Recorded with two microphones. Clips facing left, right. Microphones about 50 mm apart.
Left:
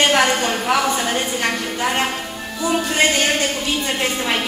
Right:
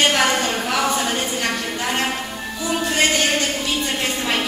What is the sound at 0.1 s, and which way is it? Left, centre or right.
Speech, centre.